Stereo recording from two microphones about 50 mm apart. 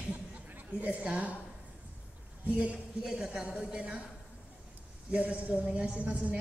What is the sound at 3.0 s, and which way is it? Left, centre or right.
A woman's voice, centre.